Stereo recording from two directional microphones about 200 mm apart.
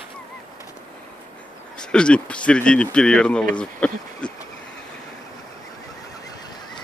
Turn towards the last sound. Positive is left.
turn(degrees=20)  # may be behind; listen again after turning